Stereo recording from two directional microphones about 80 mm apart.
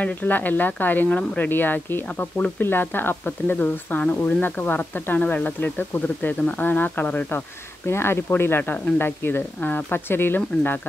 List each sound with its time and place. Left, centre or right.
0.0 s speech: left